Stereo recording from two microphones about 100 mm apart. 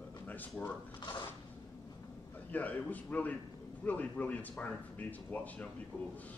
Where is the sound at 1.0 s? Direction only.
50° left (ahead or behind).